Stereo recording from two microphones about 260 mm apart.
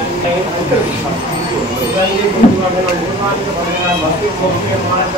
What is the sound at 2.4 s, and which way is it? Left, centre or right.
Speech, left.